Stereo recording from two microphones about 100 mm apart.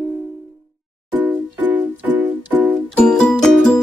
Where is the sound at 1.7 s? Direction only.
15° right (ahead or behind).